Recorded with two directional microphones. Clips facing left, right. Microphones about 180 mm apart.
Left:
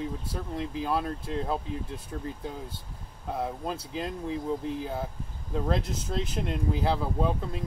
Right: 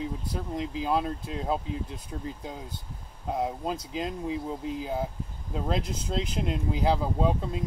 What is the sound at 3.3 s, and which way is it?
Speech, 20° right (ahead or behind).